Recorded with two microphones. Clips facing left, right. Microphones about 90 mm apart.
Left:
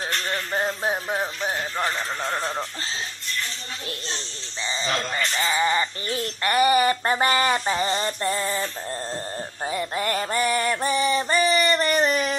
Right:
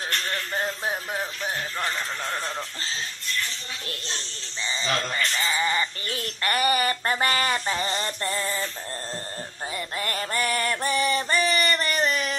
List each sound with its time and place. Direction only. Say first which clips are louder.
0.3 s music: left 5 dB; 25° left (ahead or behind)
4.8 s speech: even; 25° left (ahead or behind)
9.7 s music: left 6 dB; 20° left (ahead or behind)